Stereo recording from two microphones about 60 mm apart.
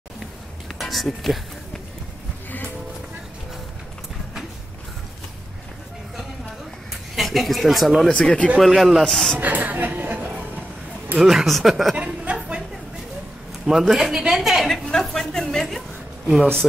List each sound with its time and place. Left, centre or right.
0.7 s speech: centre
7.2 s speech: centre
8.1 s a woman's voice: centre
8.5 s speech: centre
9.4 s speech: right
11.1 s speech: centre
12.0 s a sound: centre
13.7 s a woman's voice: centre
14.9 s a woman's voice: centre